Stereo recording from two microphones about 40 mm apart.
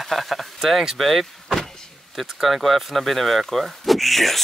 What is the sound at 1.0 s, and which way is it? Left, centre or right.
Vehicle, centre.